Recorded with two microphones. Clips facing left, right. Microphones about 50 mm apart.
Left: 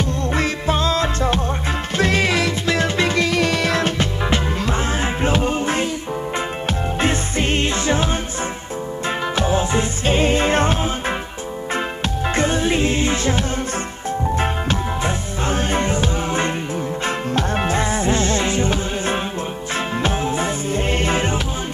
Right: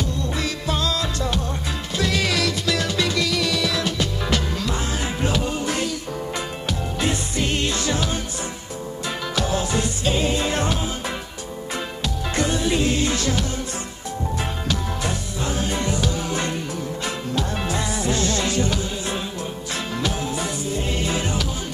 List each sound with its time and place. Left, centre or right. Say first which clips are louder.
0.0 s music: left 5 dB; left
7.0 s music: left 3 dB; left
9.3 s music: left 3 dB; left
12.4 s music: left 2 dB; left